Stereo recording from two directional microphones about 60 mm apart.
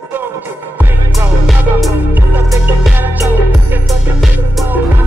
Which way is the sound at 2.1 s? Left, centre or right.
Right.